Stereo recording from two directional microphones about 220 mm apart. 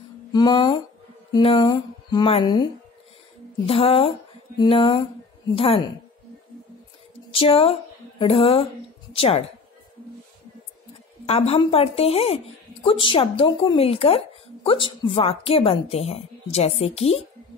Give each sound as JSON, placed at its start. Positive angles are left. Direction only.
{"t": 0.3, "sound": "speech", "side_deg": 20}
{"t": 7.3, "sound": "speech", "side_deg": 25}
{"t": 11.2, "sound": "speech", "side_deg": 25}